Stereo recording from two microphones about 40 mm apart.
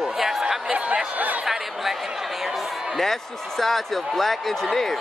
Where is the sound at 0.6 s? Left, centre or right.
Right.